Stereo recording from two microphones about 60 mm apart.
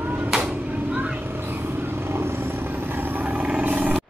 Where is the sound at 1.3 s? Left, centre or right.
Right.